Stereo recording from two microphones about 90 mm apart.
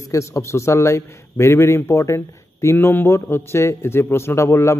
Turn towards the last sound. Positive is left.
turn(degrees=30)  # may be behind; listen again after turning